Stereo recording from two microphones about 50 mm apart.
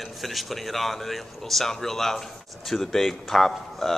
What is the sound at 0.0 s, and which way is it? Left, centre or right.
Speech, centre.